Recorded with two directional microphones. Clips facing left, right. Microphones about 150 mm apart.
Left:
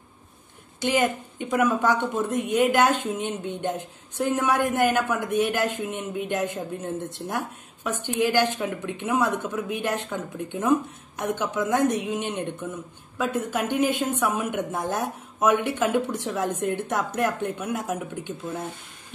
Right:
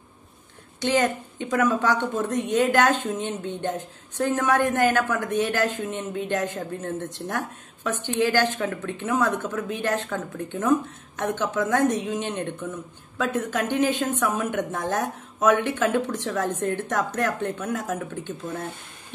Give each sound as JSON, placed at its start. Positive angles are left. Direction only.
{"t": 1.4, "sound": "a woman's voice", "side_deg": 10}